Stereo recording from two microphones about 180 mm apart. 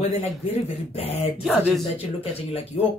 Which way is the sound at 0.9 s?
35° left (ahead or behind).